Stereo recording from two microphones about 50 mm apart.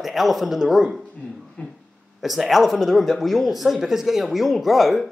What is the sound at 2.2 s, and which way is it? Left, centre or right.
Speech, centre.